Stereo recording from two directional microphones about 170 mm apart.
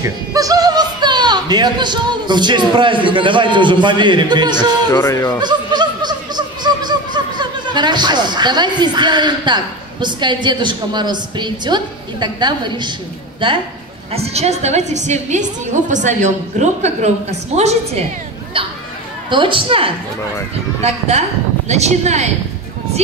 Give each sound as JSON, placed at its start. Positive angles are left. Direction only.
{"t": 0.3, "sound": "speech", "side_deg": -20}
{"t": 5.0, "sound": "speech", "side_deg": 20}
{"t": 5.4, "sound": "a sound", "side_deg": -25}
{"t": 14.1, "sound": "a woman's voice", "side_deg": -40}
{"t": 19.3, "sound": "a woman's voice", "side_deg": -30}
{"t": 21.6, "sound": "a woman's voice", "side_deg": -40}